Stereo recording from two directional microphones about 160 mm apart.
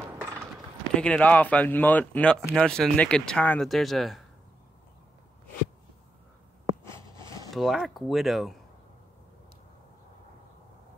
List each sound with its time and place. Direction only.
0.9 s speech: 5° left (ahead or behind)
6.8 s a sound: 20° left (ahead or behind)
7.5 s speech: centre (ahead or behind)